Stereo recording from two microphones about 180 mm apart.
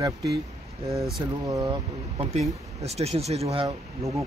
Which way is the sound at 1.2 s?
20° right (ahead or behind).